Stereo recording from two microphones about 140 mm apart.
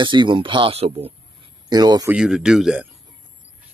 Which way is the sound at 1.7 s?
30° right (ahead or behind).